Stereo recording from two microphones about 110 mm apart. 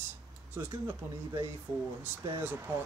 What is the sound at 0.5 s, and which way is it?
Speech, 25° right (ahead or behind).